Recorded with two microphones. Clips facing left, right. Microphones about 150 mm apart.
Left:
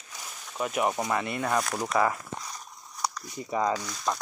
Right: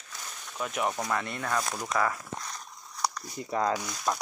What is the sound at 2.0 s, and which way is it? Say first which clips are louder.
Crumpling: left 3 dB; 15° left (ahead or behind).